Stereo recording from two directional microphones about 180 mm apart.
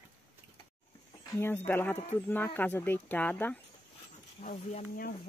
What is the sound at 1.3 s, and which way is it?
Speech, 10° left (ahead or behind).